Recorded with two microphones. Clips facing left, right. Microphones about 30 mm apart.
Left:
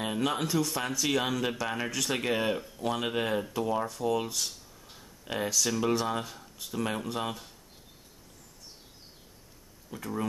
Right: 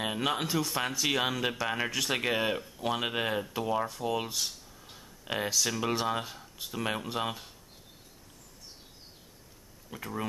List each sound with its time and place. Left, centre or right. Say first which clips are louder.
0.0 s speech: left 1 dB; centre
9.8 s speech: left 2 dB; centre